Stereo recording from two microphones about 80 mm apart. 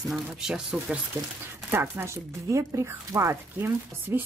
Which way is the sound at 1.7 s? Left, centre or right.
Right.